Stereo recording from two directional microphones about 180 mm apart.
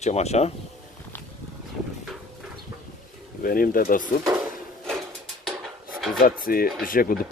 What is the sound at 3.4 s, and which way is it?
Speech, 55° left (ahead or behind).